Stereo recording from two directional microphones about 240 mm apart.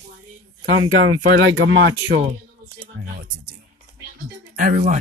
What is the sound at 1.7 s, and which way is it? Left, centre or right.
Speech, right.